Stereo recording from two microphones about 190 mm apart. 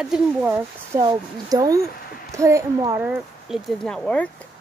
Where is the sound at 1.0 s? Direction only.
20° right (ahead or behind).